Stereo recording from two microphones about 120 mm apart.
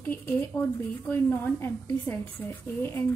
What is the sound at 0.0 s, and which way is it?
A woman's voice, 15° left (ahead or behind).